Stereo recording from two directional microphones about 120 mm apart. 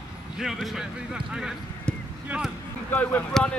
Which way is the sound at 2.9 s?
15° left (ahead or behind).